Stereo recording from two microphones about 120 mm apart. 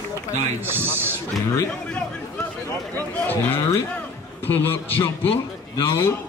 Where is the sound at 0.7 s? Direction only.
20° right (ahead or behind).